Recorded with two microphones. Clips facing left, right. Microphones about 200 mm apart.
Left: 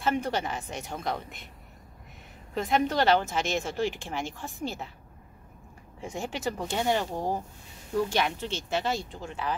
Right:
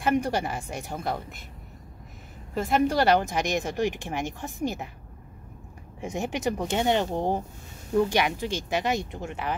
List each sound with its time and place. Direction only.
0.0 s speech: 15° right (ahead or behind)
2.5 s speech: 5° right (ahead or behind)
5.9 s speech: 20° right (ahead or behind)